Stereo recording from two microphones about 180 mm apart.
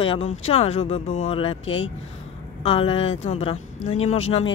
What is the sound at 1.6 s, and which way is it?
Speech, 90° left.